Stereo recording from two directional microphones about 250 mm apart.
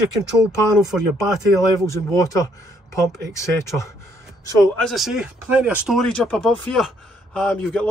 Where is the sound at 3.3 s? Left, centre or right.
Centre.